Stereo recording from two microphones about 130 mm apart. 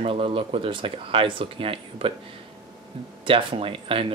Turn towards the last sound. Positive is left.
turn(degrees=-40)  # may be behind; listen again after turning